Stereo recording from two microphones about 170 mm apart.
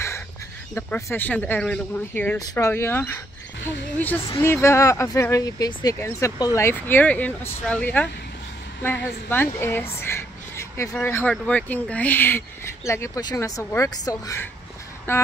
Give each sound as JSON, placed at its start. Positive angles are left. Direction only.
{"t": 0.7, "sound": "speech", "side_deg": 15}
{"t": 2.3, "sound": "speech", "side_deg": 20}
{"t": 4.4, "sound": "speech", "side_deg": 15}